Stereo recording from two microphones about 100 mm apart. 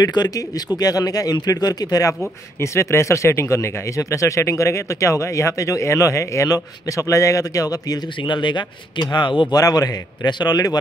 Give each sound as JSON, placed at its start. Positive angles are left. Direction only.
{"t": 0.0, "sound": "speech", "side_deg": 45}
{"t": 9.6, "sound": "speech", "side_deg": 40}